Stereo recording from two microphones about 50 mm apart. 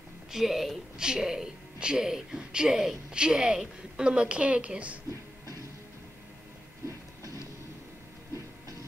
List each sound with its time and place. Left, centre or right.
0.3 s speech: centre
0.9 s speech: centre